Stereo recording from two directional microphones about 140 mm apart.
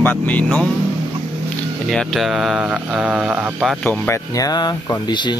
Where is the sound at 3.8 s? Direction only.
15° left (ahead or behind); by 5.4 s 30° left (ahead or behind).